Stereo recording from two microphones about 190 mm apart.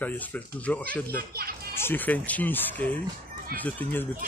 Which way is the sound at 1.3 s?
55° right (ahead or behind).